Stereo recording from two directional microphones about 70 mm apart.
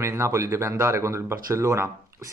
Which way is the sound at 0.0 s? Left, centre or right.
Right.